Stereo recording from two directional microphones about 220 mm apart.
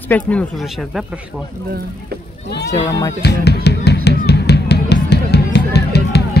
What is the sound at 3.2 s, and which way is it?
Music, 50° left (ahead or behind).